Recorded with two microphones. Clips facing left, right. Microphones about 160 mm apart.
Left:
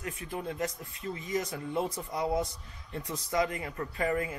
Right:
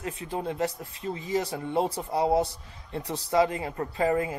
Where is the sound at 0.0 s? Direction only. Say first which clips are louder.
Right 5 dB; 25° right (ahead or behind).